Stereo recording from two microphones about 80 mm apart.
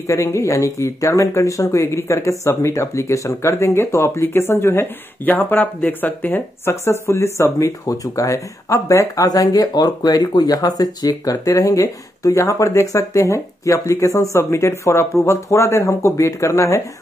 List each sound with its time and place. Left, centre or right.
0.0 s speech: left
6.7 s speech: left